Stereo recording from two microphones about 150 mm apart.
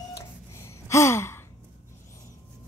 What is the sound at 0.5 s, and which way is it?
Gasp, 20° left (ahead or behind).